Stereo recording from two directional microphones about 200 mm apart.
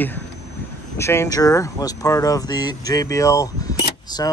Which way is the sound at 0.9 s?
15° left (ahead or behind).